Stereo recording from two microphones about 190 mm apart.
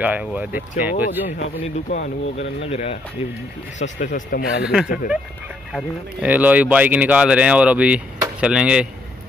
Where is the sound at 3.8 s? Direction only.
40° left (ahead or behind).